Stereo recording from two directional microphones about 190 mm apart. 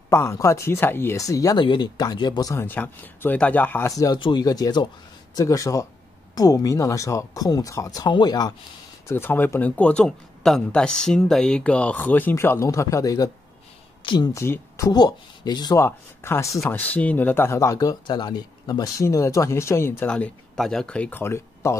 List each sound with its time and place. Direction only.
0.1 s speech: 15° left (ahead or behind)